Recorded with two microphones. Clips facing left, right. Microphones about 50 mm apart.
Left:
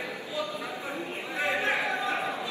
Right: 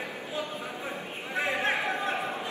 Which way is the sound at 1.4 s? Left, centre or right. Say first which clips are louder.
Left 1 dB; right.